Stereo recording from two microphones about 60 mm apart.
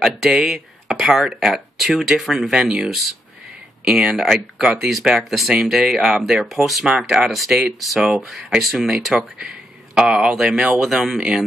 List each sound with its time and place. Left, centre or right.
0.0 s speech: centre